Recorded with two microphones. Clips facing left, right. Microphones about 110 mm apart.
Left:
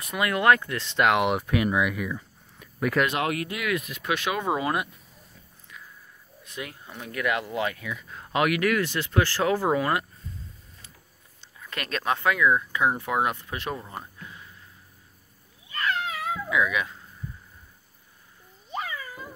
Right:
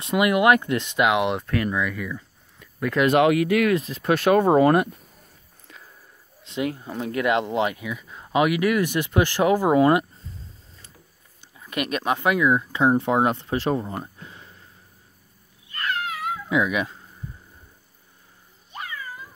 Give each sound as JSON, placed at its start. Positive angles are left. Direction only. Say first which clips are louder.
{"t": 0.0, "sound": "speech", "louder": "right 7 dB", "side_deg": -25}
{"t": 0.3, "sound": "speech", "louder": "right 2 dB", "side_deg": -15}
{"t": 1.0, "sound": "speech", "louder": "even", "side_deg": 0}
{"t": 1.4, "sound": "speech", "louder": "even", "side_deg": 15}
{"t": 3.2, "sound": "speech", "louder": "right 10 dB", "side_deg": -75}
{"t": 3.6, "sound": "speech", "louder": "right 7 dB", "side_deg": -30}
{"t": 5.7, "sound": "a sound", "louder": "even", "side_deg": -30}
{"t": 6.4, "sound": "speech", "louder": "right 11 dB", "side_deg": -25}
{"t": 11.7, "sound": "speech", "louder": "right 4 dB", "side_deg": -15}
{"t": 14.0, "sound": "a sound", "louder": "right 1 dB", "side_deg": -30}
{"t": 16.4, "sound": "speech", "louder": "right 3 dB", "side_deg": -20}